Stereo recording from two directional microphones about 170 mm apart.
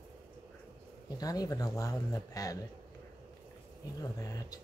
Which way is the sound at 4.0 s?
20° left (ahead or behind).